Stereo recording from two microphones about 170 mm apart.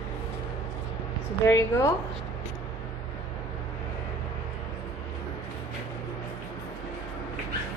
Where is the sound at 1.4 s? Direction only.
15° left (ahead or behind).